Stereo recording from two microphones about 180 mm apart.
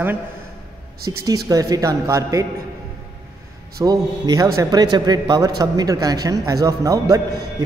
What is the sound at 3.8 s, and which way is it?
Speech, 20° right (ahead or behind).